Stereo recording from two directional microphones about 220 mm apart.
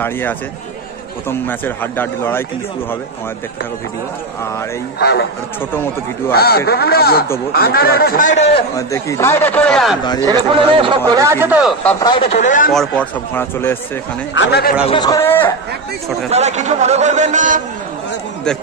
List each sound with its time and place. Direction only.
0.0 s speech: 10° left (ahead or behind)
1.5 s speech: 10° left (ahead or behind)
4.9 s a man's voice: 50° left (ahead or behind)
5.7 s speech: 10° left (ahead or behind)
6.3 s a man's voice: 45° left (ahead or behind)
8.7 s speech: 15° left (ahead or behind)
10.2 s speech: 20° right (ahead or behind)
11.8 s speech: 10° left (ahead or behind)
12.1 s speech: 25° left (ahead or behind)
12.7 s speech: 5° left (ahead or behind)
14.3 s a man's voice: 50° left (ahead or behind)
14.9 s speech: 20° left (ahead or behind)
16.3 s a man's voice: 30° right (ahead or behind)